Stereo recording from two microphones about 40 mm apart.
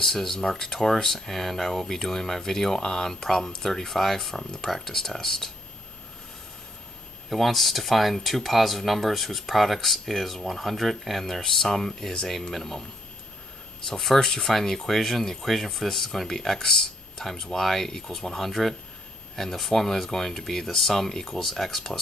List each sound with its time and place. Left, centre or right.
0.0 s speech: centre
2.8 s speech: centre
7.2 s speech: centre